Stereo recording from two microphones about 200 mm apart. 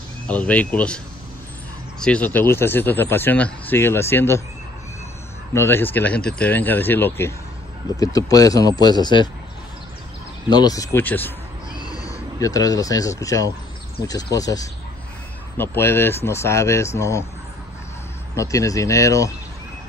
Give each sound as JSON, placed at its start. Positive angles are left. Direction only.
{"t": 0.3, "sound": "speech", "side_deg": 5}
{"t": 5.5, "sound": "speech", "side_deg": 10}
{"t": 10.5, "sound": "speech", "side_deg": 20}
{"t": 18.3, "sound": "speech", "side_deg": 15}